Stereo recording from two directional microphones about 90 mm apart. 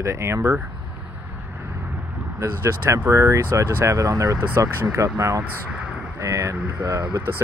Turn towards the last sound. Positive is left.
turn(degrees=-30)  # may be behind; listen again after turning